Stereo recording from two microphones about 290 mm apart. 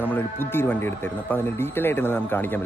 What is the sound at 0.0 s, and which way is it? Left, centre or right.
Speech, centre.